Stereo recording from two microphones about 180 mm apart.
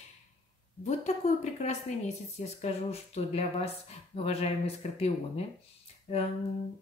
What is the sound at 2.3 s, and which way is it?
Speech, 35° left (ahead or behind).